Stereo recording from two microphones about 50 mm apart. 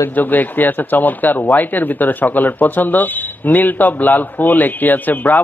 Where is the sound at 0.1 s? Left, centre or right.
Left.